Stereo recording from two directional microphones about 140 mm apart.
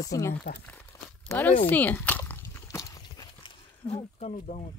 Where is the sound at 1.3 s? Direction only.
15° left (ahead or behind).